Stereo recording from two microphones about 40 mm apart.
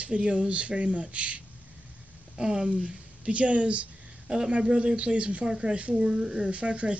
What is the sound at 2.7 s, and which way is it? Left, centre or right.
Speech, right.